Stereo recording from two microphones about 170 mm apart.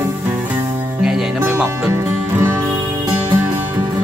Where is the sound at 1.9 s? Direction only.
15° right (ahead or behind).